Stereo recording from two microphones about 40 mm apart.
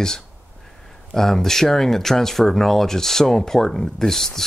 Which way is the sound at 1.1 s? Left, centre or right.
Centre.